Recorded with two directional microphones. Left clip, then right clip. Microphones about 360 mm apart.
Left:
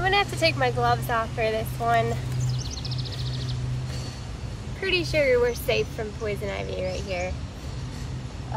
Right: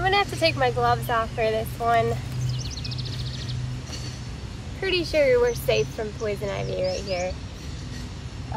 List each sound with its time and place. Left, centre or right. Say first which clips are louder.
0.0 s speech: right 1 dB; centre
2.4 s music: even; centre
4.8 s speech: right 1 dB; centre